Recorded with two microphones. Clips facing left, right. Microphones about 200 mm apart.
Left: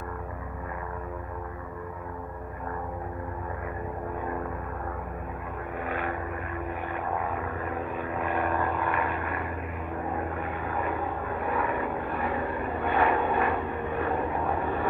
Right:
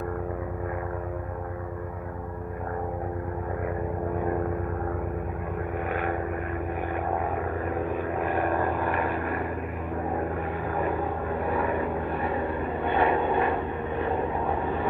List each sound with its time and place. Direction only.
5.9 s vehicle: 50° right (ahead or behind)
8.2 s vehicle: 45° right (ahead or behind)
11.5 s vehicle: 30° right (ahead or behind)
12.8 s vehicle: 30° right (ahead or behind)